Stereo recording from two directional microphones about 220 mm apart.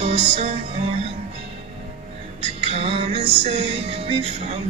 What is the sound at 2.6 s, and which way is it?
Music, 25° right (ahead or behind).